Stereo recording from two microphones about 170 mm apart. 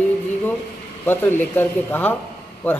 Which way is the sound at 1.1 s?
10° left (ahead or behind).